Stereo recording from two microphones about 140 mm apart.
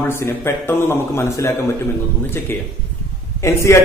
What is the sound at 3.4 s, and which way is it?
Speech, 20° left (ahead or behind).